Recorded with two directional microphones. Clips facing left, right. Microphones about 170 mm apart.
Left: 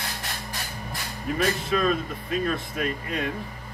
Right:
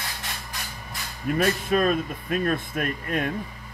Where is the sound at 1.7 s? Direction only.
45° right (ahead or behind).